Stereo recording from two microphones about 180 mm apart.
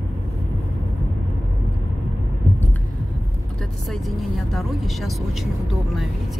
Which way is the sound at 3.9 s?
Centre (ahead or behind).